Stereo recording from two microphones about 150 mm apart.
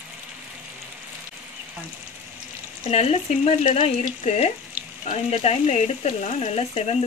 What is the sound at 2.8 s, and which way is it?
Speech, 45° left (ahead or behind).